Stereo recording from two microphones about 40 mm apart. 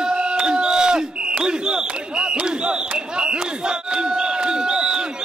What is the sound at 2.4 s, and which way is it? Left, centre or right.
Crowd, right.